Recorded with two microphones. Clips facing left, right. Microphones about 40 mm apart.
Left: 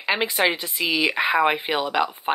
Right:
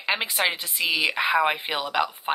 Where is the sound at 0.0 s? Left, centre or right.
Centre.